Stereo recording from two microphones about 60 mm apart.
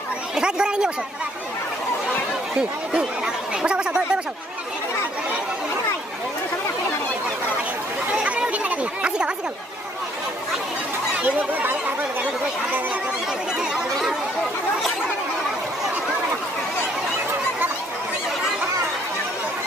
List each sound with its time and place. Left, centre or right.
0.4 s speech: centre
2.9 s speech: centre
8.1 s chatter: right
11.2 s a sound: right